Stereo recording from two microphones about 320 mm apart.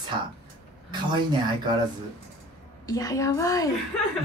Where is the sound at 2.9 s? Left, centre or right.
Centre.